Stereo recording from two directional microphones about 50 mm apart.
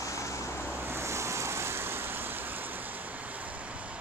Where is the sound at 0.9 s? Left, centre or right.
Right.